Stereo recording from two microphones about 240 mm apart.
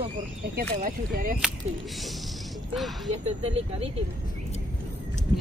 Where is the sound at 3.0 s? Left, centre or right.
Right.